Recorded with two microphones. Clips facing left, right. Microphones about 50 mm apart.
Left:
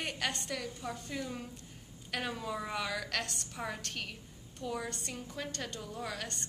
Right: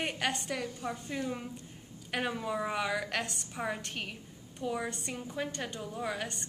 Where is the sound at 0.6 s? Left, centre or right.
Centre.